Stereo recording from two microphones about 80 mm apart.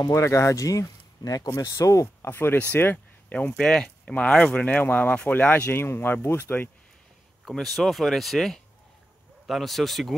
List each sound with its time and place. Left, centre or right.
0.1 s speech: left
2.2 s speech: left
3.3 s speech: centre
7.4 s speech: centre